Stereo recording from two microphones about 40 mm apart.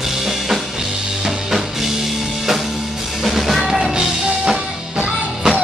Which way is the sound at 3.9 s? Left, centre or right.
Centre.